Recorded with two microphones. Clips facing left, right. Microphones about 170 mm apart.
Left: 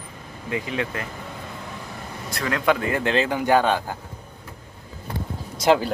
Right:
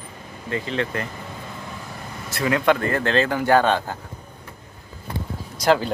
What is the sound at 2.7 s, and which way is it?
A man's voice, 10° left (ahead or behind).